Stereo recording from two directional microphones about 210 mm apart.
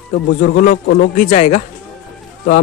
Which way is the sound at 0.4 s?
40° left (ahead or behind).